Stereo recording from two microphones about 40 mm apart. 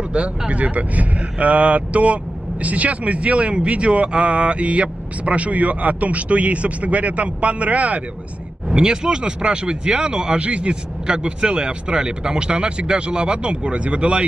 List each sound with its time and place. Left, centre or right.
0.1 s speech: right
8.6 s speech: centre